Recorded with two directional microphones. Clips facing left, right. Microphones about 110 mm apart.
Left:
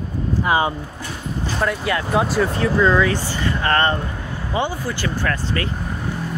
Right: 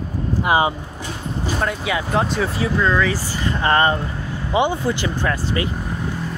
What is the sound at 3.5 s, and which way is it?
Speech, 20° right (ahead or behind).